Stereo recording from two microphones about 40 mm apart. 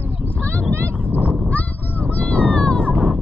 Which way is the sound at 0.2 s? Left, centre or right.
Right.